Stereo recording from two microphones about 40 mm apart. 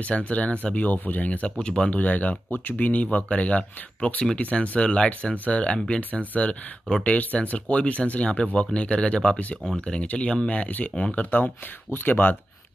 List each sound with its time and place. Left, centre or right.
0.0 s speech: left
11.2 s speech: left